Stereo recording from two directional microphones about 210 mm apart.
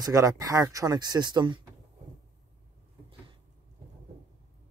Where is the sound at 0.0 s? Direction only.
15° right (ahead or behind).